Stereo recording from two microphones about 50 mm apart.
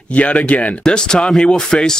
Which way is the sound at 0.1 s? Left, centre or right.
Left.